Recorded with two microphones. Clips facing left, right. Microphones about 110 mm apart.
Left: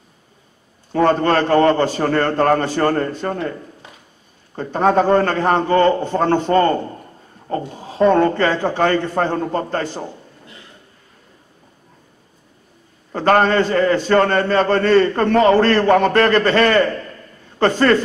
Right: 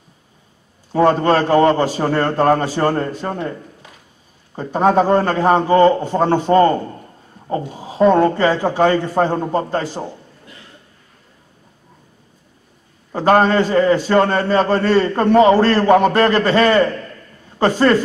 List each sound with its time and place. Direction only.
0.9 s a man's voice: 10° right (ahead or behind)
4.6 s a man's voice: 10° right (ahead or behind)
13.1 s a man's voice: 10° right (ahead or behind)